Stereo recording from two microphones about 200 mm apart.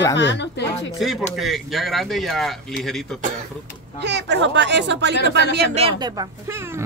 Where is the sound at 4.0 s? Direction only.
60° right (ahead or behind).